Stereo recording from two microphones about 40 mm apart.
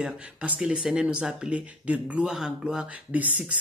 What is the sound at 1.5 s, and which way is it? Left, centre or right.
Speech, right.